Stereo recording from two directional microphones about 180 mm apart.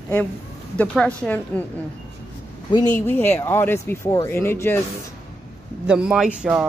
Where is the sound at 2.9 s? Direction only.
10° left (ahead or behind).